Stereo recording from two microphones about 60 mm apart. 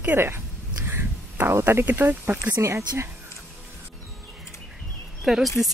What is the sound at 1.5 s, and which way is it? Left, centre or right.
Speech, right.